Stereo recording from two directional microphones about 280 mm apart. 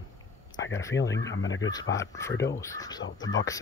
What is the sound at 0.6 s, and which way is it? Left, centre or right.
Speech, left.